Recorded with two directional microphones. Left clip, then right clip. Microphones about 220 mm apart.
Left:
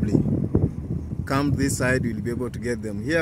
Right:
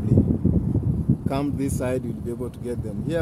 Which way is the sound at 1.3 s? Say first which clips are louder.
Left 5 dB; 5° left (ahead or behind).